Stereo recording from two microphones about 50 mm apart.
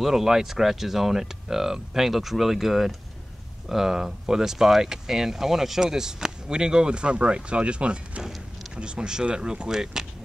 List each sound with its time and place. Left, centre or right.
0.0 s speech: centre